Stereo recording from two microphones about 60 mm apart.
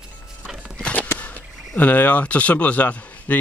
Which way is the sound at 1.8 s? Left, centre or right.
Left.